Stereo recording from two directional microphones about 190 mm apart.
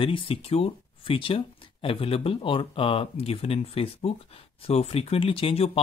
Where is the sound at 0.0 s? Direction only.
30° left (ahead or behind).